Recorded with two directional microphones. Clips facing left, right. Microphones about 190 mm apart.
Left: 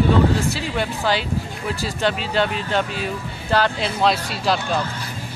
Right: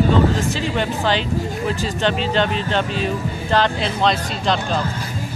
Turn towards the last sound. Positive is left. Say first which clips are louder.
# right 1 dB
turn(degrees=5)  # may be behind; listen again after turning